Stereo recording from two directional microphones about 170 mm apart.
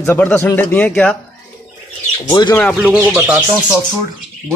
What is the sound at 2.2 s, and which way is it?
Speech, 25° left (ahead or behind).